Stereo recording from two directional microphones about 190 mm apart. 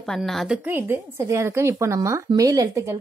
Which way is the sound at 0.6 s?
10° right (ahead or behind).